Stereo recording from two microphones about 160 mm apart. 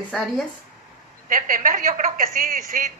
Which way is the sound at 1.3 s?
60° right (ahead or behind).